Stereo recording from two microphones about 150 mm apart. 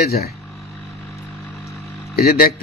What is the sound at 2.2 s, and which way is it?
Speech, 80° left.